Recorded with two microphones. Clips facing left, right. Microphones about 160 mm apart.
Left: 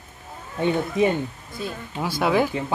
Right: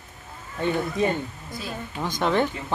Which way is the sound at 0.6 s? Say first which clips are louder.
Left 3 dB; 20° left (ahead or behind).